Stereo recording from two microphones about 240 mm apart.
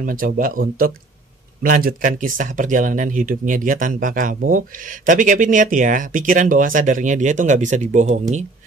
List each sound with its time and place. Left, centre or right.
0.0 s speech: right